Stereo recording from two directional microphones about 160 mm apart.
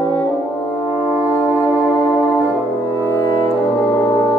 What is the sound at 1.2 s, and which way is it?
Music, 15° left (ahead or behind).